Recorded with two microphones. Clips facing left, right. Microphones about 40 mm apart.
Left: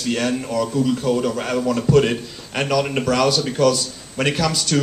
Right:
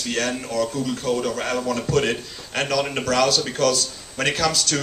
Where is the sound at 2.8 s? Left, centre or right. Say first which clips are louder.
Left 3 dB; centre.